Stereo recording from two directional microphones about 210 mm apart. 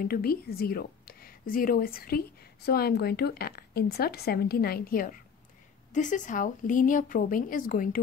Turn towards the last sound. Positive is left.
turn(degrees=40)  # may be behind; listen again after turning